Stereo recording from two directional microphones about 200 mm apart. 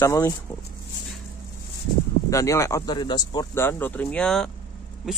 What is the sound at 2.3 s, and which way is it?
Speech, 15° left (ahead or behind).